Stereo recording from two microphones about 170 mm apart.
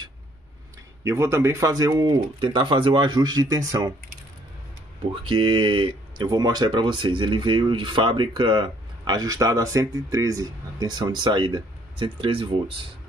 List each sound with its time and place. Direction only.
1.0 s speech: 15° right (ahead or behind)
5.3 s speech: 30° right (ahead or behind)